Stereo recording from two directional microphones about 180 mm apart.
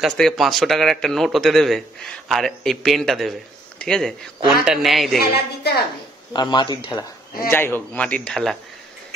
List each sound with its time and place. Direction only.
0.0 s a man's voice: centre (ahead or behind)
5.3 s a woman's voice: 60° left (ahead or behind)
6.3 s a man's voice: 25° left (ahead or behind); by 8.5 s centre (ahead or behind)